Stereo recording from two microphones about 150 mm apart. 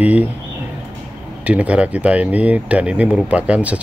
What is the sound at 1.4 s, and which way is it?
Speech, 10° right (ahead or behind).